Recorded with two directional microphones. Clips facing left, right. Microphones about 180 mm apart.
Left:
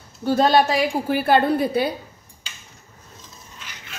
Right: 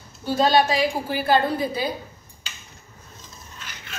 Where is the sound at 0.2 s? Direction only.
55° left (ahead or behind).